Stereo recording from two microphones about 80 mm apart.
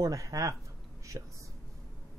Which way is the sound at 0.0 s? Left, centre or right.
Right.